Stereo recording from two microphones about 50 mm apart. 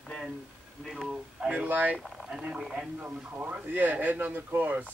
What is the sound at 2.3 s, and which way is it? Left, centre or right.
Speech, centre.